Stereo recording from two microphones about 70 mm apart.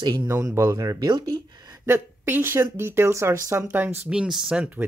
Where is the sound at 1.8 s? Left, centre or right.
Right.